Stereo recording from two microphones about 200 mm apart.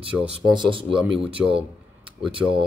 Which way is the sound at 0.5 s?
25° right (ahead or behind).